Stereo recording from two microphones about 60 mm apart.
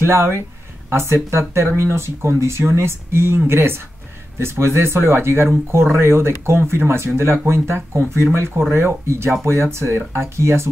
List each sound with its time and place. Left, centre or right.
0.0 s speech: right